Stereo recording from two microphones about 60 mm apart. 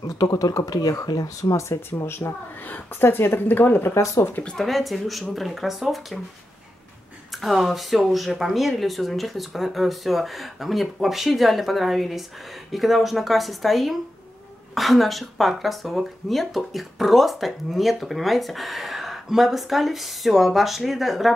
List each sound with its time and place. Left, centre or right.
0.0 s speech: left
2.0 s speech: left
3.9 s speech: left
4.6 s speech: centre
7.4 s speech: centre